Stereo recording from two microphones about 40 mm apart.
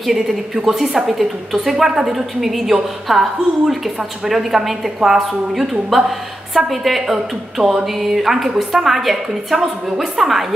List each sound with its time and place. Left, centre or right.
0.1 s a woman's voice: centre
9.5 s a woman's voice: centre
9.9 s a woman's voice: centre